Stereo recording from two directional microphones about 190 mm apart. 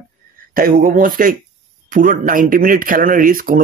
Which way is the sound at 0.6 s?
50° right (ahead or behind).